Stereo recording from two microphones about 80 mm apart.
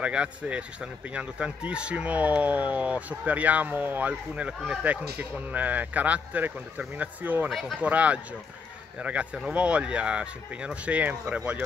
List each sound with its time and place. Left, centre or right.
0.0 s speech: centre
7.4 s speech: centre
7.8 s speech: centre